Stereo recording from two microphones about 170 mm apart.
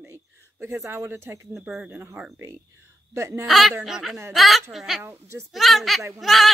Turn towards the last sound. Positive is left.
turn(degrees=0)  # may be behind; listen again after turning